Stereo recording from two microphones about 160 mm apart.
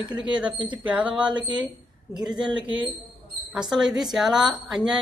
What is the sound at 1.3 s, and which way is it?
Speech, 30° right (ahead or behind).